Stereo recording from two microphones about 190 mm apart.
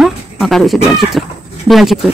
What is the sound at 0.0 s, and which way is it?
Speech, centre (ahead or behind).